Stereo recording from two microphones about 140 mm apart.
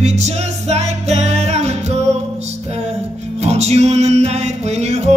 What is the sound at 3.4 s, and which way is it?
Music, 50° right (ahead or behind).